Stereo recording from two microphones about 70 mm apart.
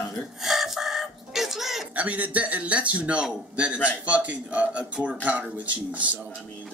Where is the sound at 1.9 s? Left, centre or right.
Right.